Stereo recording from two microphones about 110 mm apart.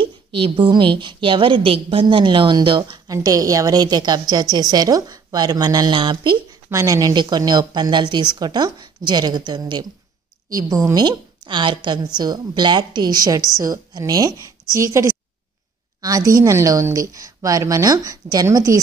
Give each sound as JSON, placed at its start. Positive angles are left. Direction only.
{"t": 0.0, "sound": "a woman's voice", "side_deg": -55}
{"t": 3.1, "sound": "a woman's voice", "side_deg": -35}
{"t": 6.7, "sound": "a woman's voice", "side_deg": -30}